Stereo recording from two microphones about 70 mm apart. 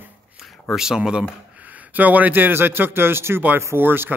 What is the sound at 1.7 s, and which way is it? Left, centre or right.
A man's voice, right.